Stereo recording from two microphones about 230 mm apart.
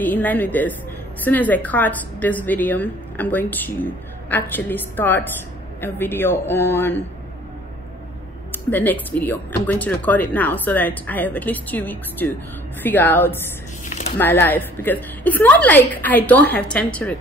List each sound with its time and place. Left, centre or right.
0.0 s a woman's voice: centre
8.5 s a woman's voice: centre
13.8 s a sound: left
14.1 s a woman's voice: centre